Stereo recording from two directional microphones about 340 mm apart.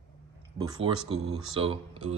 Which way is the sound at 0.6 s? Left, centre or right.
Centre.